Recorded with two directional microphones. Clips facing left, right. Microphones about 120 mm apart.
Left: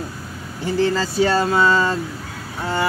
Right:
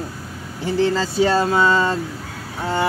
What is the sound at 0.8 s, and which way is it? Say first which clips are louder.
Speech: even; 25° right (ahead or behind).